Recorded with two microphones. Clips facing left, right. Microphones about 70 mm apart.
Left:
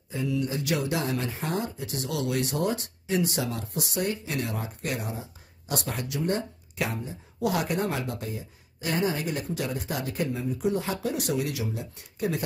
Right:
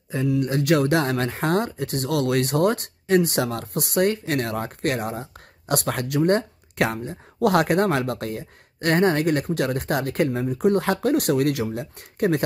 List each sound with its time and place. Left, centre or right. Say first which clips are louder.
0.1 s speech: right 6 dB; right